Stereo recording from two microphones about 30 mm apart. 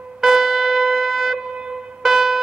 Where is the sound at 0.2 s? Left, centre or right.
Centre.